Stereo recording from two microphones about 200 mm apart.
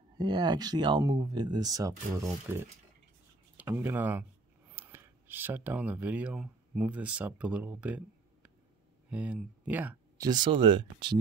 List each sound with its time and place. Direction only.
0.2 s speech: 20° right (ahead or behind)
10.2 s speech: 20° right (ahead or behind)